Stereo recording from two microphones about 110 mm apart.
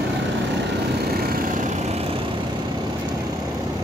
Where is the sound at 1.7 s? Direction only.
85° right; by 2.2 s 65° right (ahead or behind).